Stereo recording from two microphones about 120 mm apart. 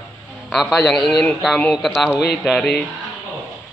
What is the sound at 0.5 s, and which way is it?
A man's voice, centre (ahead or behind).